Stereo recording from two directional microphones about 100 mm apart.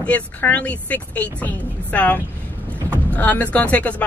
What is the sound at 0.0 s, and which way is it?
Speech, 15° left (ahead or behind).